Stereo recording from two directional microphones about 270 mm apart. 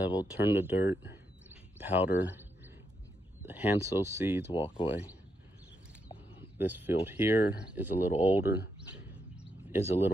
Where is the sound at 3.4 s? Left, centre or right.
Centre.